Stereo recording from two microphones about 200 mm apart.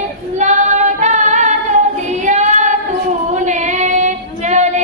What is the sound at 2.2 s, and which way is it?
Child singing, 35° right (ahead or behind).